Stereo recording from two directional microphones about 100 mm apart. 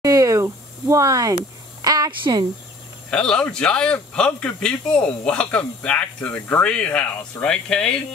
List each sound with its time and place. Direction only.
0.0 s a sound: 35° right (ahead or behind)
2.0 s speech: 55° right (ahead or behind)
3.1 s speech: 10° left (ahead or behind)